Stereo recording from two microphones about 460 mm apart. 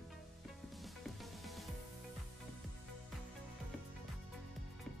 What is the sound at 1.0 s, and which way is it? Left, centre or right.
Music, centre.